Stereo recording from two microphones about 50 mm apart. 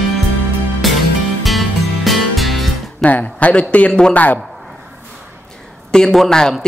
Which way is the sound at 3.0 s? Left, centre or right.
Left.